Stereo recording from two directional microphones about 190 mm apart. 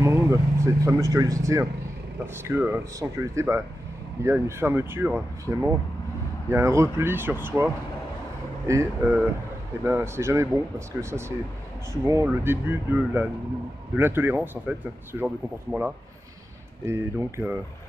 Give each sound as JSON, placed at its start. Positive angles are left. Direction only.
{"t": 0.0, "sound": "vehicle", "side_deg": -15}
{"t": 0.8, "sound": "speech", "side_deg": -15}